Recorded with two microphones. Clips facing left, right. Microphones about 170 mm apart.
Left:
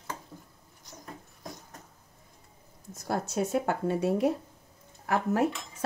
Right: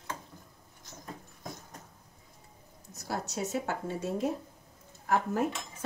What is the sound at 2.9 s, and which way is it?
Speech, 55° left (ahead or behind).